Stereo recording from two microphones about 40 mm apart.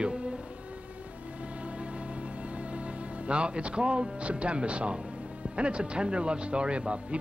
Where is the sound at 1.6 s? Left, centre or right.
Right.